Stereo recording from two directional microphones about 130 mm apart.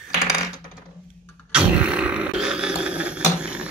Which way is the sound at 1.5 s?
10° right (ahead or behind).